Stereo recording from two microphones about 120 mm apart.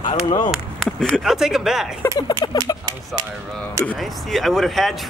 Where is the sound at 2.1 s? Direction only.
35° left (ahead or behind).